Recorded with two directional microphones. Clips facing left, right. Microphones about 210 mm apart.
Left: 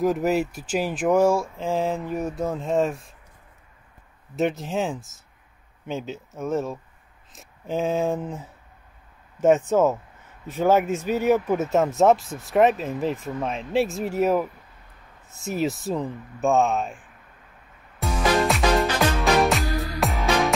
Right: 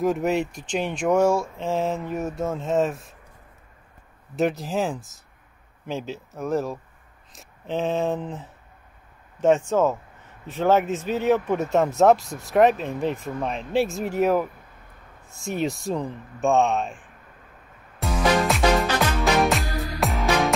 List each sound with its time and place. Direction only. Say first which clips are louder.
0.0 s speech: left 1 dB; centre (ahead or behind)
4.4 s speech: right 1 dB; centre (ahead or behind)
9.6 s speech: left 1 dB; 15° left (ahead or behind)
10.7 s speech: even; centre (ahead or behind)
17.9 s music: even; centre (ahead or behind)